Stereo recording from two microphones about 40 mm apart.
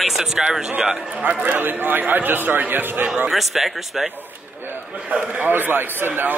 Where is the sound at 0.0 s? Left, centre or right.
Centre.